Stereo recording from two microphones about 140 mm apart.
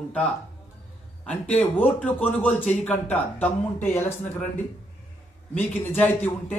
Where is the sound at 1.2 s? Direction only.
10° left (ahead or behind).